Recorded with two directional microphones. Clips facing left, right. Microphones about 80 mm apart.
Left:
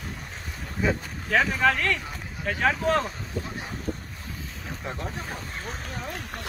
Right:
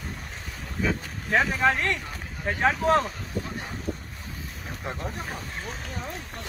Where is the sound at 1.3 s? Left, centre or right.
Right.